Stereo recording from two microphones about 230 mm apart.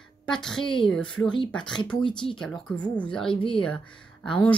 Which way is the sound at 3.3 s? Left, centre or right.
Left.